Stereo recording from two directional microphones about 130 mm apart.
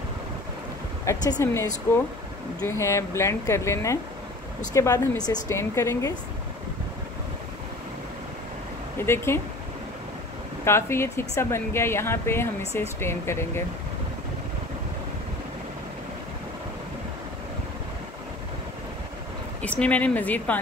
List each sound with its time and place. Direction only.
1.1 s speech: 20° left (ahead or behind)
8.9 s speech: 20° left (ahead or behind)
10.6 s speech: 20° left (ahead or behind)
19.6 s speech: 10° left (ahead or behind)